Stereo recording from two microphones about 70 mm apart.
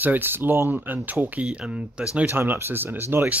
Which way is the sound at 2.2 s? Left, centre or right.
Right.